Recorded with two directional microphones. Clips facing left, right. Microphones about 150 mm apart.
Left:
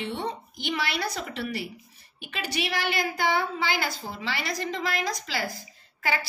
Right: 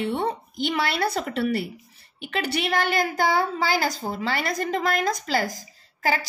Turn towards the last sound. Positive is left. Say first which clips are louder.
# right 4 dB
turn(degrees=-40)  # may be behind; listen again after turning